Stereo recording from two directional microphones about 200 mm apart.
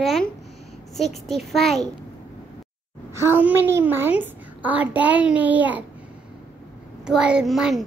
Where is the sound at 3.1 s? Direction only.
10° right (ahead or behind).